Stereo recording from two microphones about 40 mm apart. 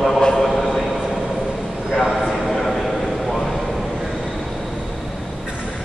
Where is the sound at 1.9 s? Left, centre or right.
Centre.